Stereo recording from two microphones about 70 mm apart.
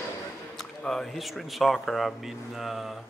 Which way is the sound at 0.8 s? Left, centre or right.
Centre.